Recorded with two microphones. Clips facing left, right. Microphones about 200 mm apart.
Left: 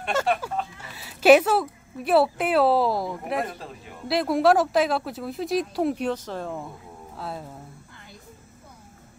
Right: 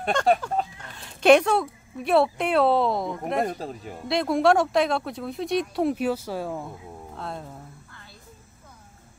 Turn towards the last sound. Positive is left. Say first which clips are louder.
# even
turn(degrees=5)  # may be behind; listen again after turning